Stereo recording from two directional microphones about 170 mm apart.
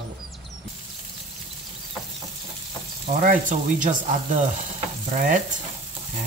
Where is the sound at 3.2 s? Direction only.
50° right (ahead or behind).